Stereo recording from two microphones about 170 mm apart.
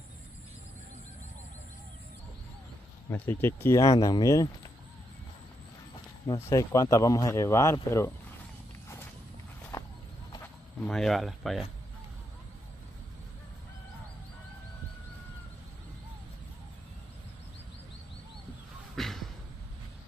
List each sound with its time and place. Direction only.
3.1 s speech: 15° left (ahead or behind)
6.5 s speech: 20° left (ahead or behind)
9.7 s walk: 20° left (ahead or behind)
10.4 s speech: 5° left (ahead or behind)
18.9 s a sound: centre (ahead or behind)